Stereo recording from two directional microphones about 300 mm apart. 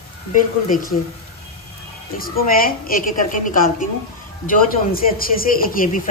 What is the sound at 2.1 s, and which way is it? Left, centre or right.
A woman's voice, left.